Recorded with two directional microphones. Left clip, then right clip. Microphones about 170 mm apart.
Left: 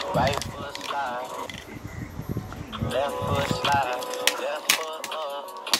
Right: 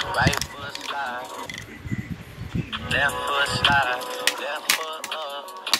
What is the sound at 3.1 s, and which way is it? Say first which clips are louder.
Speech: right 3 dB; 25° right (ahead or behind).